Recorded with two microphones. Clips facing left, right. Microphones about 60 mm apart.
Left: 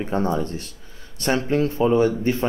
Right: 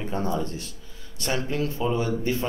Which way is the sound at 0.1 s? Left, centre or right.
Left.